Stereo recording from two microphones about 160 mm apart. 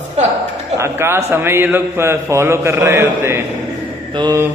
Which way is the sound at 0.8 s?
15° right (ahead or behind).